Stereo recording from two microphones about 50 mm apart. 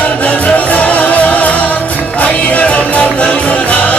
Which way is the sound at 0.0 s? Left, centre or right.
Left.